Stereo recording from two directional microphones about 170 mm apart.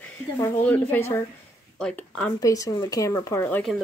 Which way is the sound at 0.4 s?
10° left (ahead or behind).